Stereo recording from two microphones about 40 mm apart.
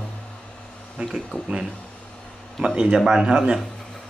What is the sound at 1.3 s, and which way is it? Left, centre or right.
Speech, left.